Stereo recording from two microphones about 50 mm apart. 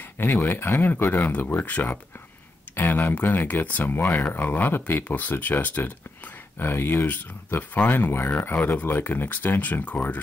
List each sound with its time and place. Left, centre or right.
0.2 s speech: left
6.6 s speech: left
7.7 s speech: left